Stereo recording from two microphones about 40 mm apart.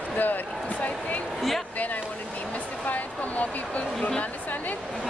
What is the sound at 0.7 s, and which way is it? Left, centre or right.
Speech, left.